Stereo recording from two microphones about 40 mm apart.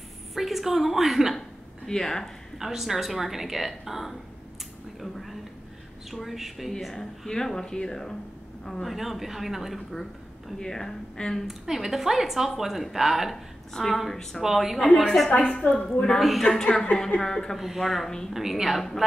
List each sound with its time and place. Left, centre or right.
0.3 s a woman's voice: centre
1.9 s speech: centre
2.6 s speech: centre
5.0 s a sound: centre
6.1 s speech: centre
6.8 s speech: centre
8.8 s speech: centre
10.6 s speech: centre
11.4 s a woman's voice: centre
15.2 s a woman's voice: left
16.2 s speech: centre
16.4 s a woman's voice: centre
17.6 s a woman's voice: centre